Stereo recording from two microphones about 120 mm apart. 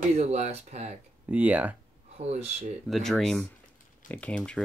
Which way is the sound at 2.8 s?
Centre (ahead or behind).